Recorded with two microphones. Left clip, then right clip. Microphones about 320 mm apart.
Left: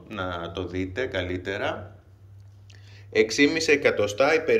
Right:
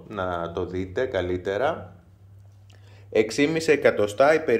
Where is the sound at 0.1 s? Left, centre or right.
Centre.